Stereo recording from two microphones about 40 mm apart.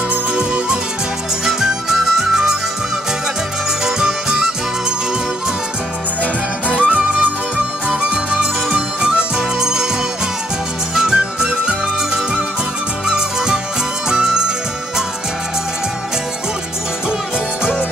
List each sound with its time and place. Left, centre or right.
0.1 s music: right
1.4 s music: centre
3.8 s music: centre
6.7 s music: right
11.0 s music: centre